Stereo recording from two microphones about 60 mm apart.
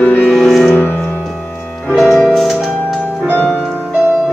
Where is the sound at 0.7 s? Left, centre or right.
Left.